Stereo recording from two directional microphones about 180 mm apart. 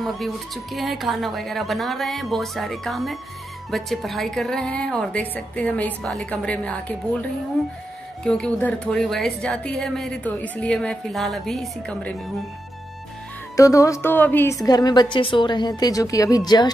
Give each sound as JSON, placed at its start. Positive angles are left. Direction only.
{"t": 0.0, "sound": "a woman's voice", "side_deg": 0}
{"t": 13.6, "sound": "a woman's voice", "side_deg": 20}